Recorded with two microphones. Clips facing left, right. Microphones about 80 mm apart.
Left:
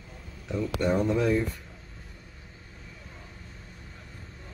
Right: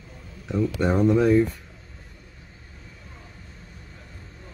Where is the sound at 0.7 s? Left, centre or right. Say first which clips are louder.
Right 5 dB; right.